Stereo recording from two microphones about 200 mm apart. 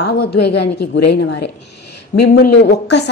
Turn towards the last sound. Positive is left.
turn(degrees=55)  # may be behind; listen again after turning